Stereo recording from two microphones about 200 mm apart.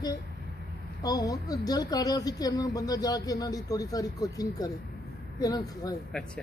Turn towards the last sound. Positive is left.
turn(degrees=20)  # may be behind; listen again after turning